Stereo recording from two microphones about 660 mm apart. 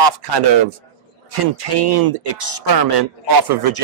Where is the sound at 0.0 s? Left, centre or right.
Right.